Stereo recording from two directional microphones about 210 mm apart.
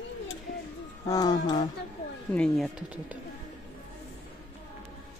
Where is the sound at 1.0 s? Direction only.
15° left (ahead or behind).